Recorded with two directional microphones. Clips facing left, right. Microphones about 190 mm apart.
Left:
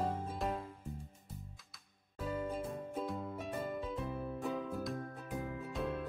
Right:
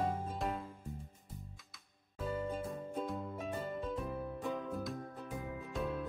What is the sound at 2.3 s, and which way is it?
Music, 5° left (ahead or behind).